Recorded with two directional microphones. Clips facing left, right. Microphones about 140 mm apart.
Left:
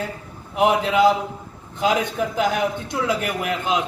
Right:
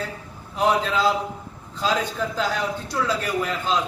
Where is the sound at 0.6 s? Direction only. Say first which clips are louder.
Left 4 dB; 20° left (ahead or behind).